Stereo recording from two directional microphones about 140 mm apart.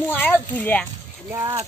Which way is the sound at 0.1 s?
15° left (ahead or behind).